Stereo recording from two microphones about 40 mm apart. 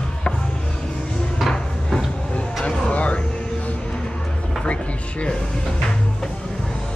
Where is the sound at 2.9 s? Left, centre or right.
Left.